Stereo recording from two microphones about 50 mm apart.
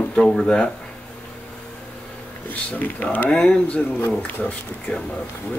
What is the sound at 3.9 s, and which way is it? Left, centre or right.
Speech, left.